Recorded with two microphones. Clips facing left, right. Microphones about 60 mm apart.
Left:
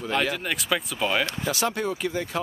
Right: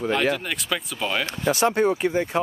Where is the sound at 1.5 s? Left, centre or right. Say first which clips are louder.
Right 6 dB; right.